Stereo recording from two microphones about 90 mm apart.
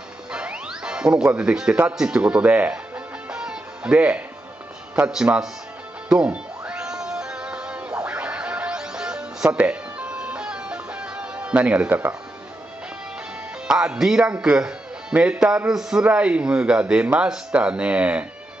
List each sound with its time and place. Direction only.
0.3 s speech: 10° right (ahead or behind)
3.3 s music: 10° right (ahead or behind)
4.9 s a man's voice: 10° right (ahead or behind)
6.0 s music: 10° right (ahead or behind)
13.7 s a man's voice: 5° right (ahead or behind)